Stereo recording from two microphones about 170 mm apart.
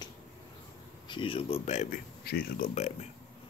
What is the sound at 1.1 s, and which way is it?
Speech, 30° left (ahead or behind).